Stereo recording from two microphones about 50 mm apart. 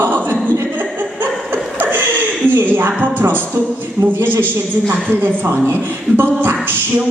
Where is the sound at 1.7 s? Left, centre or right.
Right.